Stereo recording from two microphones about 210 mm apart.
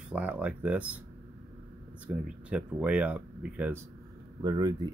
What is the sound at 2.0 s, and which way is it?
Speech, 5° right (ahead or behind).